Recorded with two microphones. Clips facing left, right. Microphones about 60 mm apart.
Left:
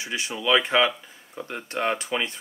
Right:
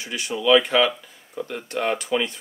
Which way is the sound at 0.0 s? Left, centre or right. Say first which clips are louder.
Right 3 dB; left.